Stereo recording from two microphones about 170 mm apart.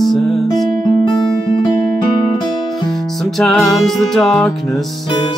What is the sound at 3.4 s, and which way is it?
Music, centre (ahead or behind).